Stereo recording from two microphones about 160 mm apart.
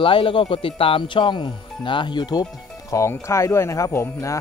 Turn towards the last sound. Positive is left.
turn(degrees=15)  # may be behind; listen again after turning